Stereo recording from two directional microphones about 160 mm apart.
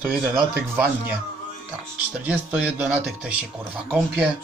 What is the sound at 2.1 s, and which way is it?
Speech, 10° right (ahead or behind).